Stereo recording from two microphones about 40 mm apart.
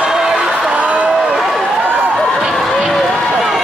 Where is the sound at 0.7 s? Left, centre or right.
Right.